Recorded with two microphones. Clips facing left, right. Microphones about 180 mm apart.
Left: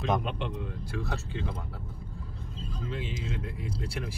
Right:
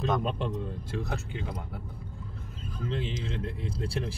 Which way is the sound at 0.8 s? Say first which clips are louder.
Right 1 dB; 20° right (ahead or behind).